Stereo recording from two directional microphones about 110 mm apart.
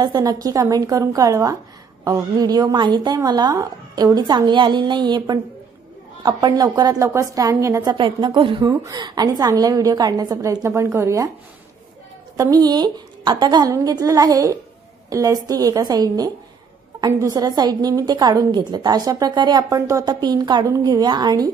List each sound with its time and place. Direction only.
0.0 s a woman's voice: 35° right (ahead or behind)
7.9 s a woman's voice: 45° right (ahead or behind)
8.6 s a woman's voice: 35° right (ahead or behind)
12.6 s a woman's voice: 40° right (ahead or behind)